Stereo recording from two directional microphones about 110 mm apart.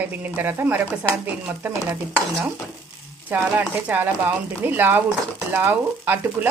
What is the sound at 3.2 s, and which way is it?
A woman's voice, 15° right (ahead or behind).